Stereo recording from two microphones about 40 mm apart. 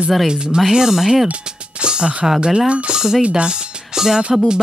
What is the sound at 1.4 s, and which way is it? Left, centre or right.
Music, right.